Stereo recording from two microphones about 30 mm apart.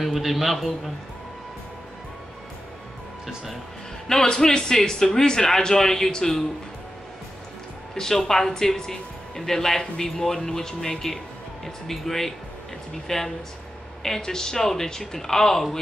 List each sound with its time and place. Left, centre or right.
0.0 s a man's voice: centre
4.4 s a man's voice: centre
7.9 s a man's voice: centre